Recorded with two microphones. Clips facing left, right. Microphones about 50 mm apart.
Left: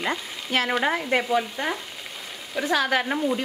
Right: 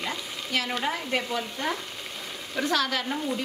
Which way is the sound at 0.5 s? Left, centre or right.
Left.